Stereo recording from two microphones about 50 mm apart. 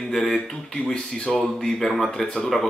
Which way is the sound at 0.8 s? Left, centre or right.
Centre.